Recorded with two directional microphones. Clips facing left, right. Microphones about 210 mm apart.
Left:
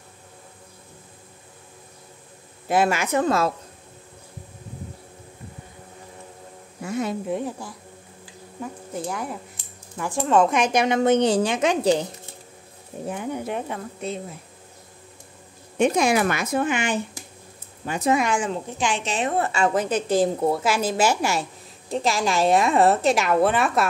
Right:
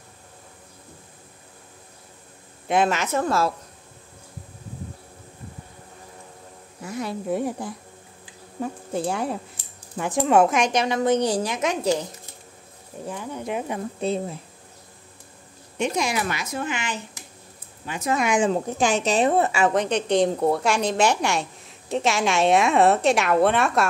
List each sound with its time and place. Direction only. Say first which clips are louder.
2.7 s a woman's voice: left 1 dB; 10° left (ahead or behind)
6.9 s speech: left 4 dB; 25° left (ahead or behind)
7.2 s speech: right 2 dB; 5° right (ahead or behind)
8.9 s speech: right 4 dB; 30° right (ahead or behind)
9.9 s speech: right 1 dB; 20° right (ahead or behind)
10.5 s a woman's voice: left 1 dB; 5° left (ahead or behind)
10.8 s speech: left 4 dB; 20° left (ahead or behind)
13.0 s speech: left 4 dB; 20° left (ahead or behind)
13.4 s a woman's voice: even; centre (ahead or behind)
13.9 s a woman's voice: right 7 dB; 30° right (ahead or behind)
15.8 s speech: left 5 dB; 55° left (ahead or behind)
17.8 s speech: left 5 dB; 35° left (ahead or behind)
18.5 s a woman's voice: right 4 dB; 40° right (ahead or behind)
19.7 s a woman's voice: even; 5° left (ahead or behind)